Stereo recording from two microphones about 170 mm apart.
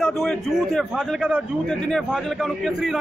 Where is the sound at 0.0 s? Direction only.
Centre (ahead or behind).